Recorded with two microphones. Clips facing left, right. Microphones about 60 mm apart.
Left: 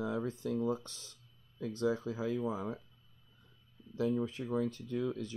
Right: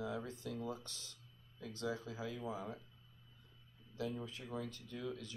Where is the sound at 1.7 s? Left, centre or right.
Left.